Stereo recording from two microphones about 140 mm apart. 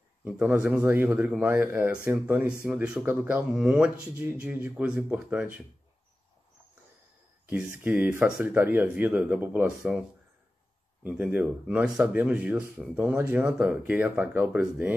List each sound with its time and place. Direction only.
0.2 s speech: 10° right (ahead or behind)
7.4 s speech: 10° right (ahead or behind)
11.1 s speech: 10° right (ahead or behind)